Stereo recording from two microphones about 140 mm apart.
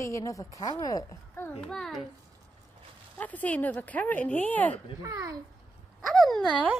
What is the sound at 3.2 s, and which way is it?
Speech, 10° left (ahead or behind).